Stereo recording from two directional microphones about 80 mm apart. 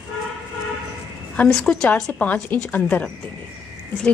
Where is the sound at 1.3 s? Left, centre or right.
Centre.